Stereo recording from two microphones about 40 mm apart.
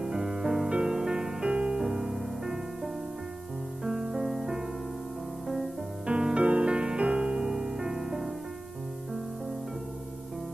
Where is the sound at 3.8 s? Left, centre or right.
Centre.